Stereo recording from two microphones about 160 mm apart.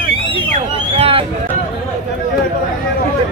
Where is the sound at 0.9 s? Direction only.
35° right (ahead or behind).